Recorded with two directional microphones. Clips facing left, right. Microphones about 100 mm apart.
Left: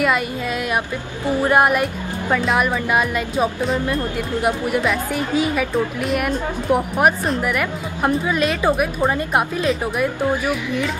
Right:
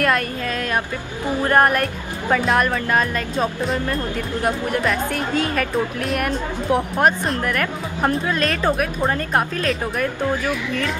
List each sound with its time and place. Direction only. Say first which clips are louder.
0.0 s a woman's voice: left 1 dB; 10° left (ahead or behind)